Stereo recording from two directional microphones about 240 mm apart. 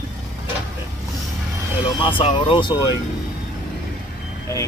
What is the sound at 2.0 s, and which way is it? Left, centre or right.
Speech, left.